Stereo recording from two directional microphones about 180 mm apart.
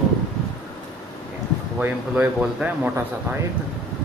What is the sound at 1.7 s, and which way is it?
A man's voice, 10° right (ahead or behind).